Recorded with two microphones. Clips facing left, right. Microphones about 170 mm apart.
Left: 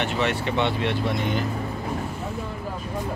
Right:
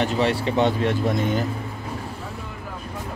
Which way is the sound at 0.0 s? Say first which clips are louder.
Right 3 dB; 35° right (ahead or behind).